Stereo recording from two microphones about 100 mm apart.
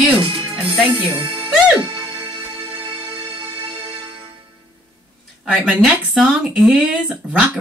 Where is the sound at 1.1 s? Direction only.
55° right (ahead or behind).